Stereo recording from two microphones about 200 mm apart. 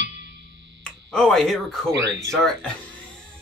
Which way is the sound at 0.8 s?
5° left (ahead or behind).